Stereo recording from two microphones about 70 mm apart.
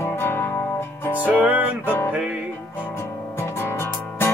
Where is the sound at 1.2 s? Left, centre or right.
Right.